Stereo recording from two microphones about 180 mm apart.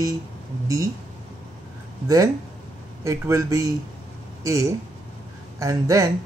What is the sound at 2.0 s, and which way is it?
A man's voice, 20° right (ahead or behind).